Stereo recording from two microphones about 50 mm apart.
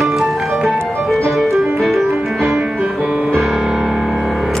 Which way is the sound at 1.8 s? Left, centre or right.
Centre.